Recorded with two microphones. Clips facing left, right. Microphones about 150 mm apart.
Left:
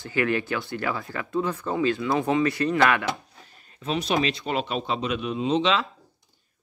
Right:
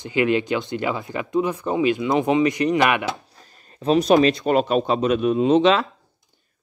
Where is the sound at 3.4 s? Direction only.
40° right (ahead or behind).